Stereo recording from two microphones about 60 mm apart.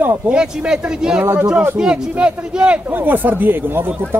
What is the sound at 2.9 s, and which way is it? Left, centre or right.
Speech, right.